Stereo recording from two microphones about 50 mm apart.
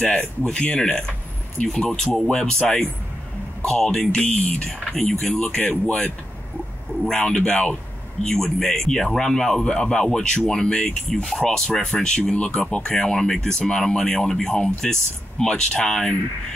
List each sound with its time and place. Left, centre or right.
0.5 s speech: centre
3.6 s speech: centre
4.9 s speech: centre
7.1 s speech: centre